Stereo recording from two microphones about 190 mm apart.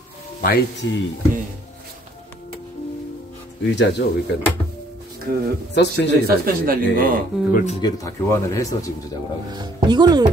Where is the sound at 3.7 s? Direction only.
65° left (ahead or behind).